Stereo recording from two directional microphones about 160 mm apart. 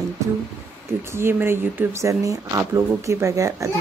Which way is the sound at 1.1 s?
15° right (ahead or behind).